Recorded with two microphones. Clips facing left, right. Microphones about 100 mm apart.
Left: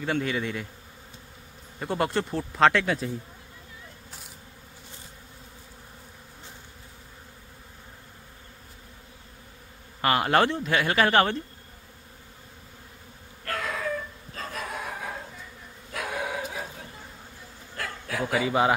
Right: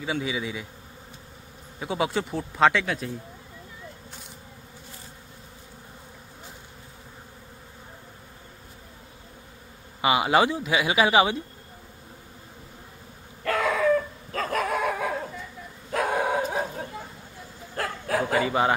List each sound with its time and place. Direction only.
0.0 s a man's voice: 5° right (ahead or behind)
1.8 s a man's voice: centre (ahead or behind)
10.0 s speech: 5° right (ahead or behind)
13.5 s a sound: 90° right
14.3 s dog: 60° right (ahead or behind); by 15.1 s 90° right
15.9 s dog: 40° right (ahead or behind)
17.7 s a sound: 40° right (ahead or behind)
18.3 s a man's voice: centre (ahead or behind)